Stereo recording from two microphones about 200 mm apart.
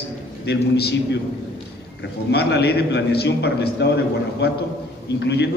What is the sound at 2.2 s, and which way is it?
A man's voice, 60° left (ahead or behind).